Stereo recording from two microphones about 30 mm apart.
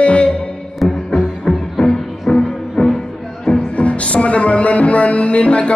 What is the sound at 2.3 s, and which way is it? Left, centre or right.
Music, left.